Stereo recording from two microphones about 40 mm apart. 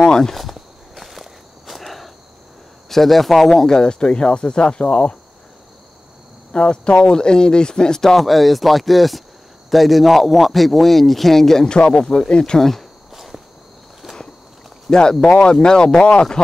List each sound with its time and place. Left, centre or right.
0.0 s a sound: centre
0.9 s walk: centre
2.9 s speech: centre; by 4.9 s left
6.5 s speech: left
11.7 s speech: left
13.1 s walk: centre
14.0 s a sound: centre
14.9 s speech: centre